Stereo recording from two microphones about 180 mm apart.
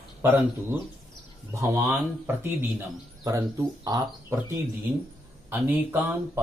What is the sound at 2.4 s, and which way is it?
Speech, 10° right (ahead or behind).